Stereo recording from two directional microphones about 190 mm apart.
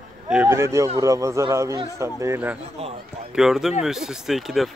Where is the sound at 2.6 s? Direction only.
35° right (ahead or behind).